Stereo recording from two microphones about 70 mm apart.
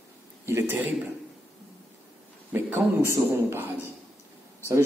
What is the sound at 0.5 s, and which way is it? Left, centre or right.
Speech, right.